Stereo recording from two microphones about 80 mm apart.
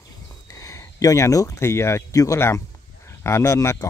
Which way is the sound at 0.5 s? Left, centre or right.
Left.